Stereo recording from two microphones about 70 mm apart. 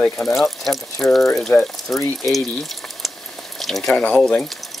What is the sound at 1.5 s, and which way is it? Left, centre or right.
Speech, left.